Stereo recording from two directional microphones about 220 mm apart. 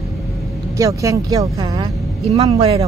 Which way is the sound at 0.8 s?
15° right (ahead or behind).